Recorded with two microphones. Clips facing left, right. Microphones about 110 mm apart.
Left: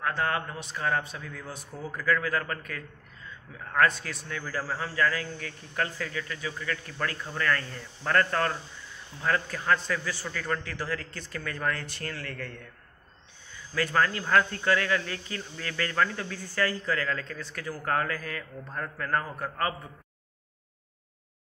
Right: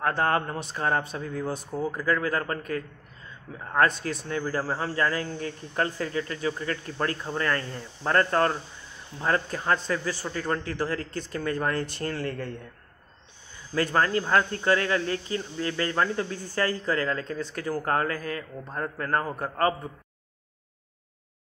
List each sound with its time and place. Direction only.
0.0 s speech: 40° right (ahead or behind)
1.7 s speech: 25° right (ahead or behind)
13.7 s speech: 30° right (ahead or behind)